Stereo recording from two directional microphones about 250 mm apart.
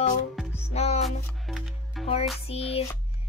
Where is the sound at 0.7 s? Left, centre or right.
Left.